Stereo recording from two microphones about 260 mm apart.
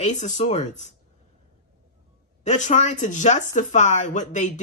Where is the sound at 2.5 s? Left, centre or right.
Left.